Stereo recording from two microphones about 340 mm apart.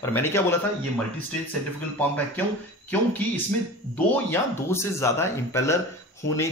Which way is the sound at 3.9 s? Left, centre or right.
Centre.